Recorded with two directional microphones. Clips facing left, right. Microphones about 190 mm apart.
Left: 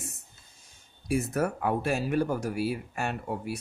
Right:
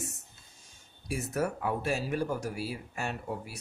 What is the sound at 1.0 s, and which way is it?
Speech, 55° left (ahead or behind).